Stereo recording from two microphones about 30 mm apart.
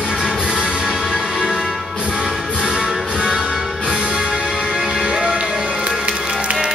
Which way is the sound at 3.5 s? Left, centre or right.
Centre.